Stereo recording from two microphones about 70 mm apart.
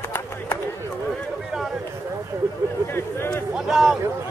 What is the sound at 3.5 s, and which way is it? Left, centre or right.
Speech, centre.